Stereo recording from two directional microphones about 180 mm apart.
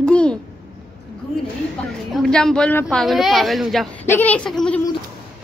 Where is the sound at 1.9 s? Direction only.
Centre (ahead or behind).